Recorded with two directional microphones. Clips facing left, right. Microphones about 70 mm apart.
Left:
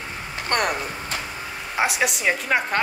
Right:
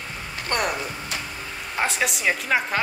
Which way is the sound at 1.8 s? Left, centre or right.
Centre.